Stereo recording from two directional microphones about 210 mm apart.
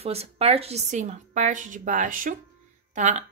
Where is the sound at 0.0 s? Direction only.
30° right (ahead or behind).